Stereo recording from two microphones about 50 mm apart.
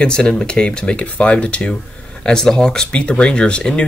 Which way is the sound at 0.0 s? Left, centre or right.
Centre.